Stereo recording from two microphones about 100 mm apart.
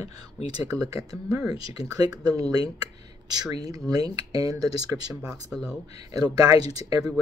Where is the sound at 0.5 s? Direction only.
35° right (ahead or behind).